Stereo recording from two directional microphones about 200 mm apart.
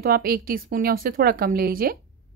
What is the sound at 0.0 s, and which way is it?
A woman's voice, 50° right (ahead or behind).